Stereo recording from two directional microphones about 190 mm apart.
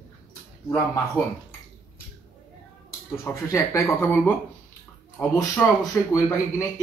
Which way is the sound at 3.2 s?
15° left (ahead or behind).